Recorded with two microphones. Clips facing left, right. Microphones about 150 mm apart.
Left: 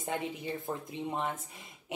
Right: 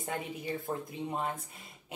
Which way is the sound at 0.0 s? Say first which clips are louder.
Left 2 dB; 20° left (ahead or behind).